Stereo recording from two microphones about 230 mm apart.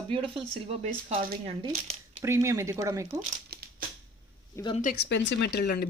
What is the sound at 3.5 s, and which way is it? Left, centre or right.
Crushing, right.